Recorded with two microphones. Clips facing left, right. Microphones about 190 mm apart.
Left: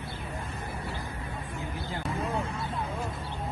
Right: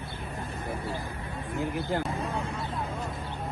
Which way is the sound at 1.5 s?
60° right (ahead or behind).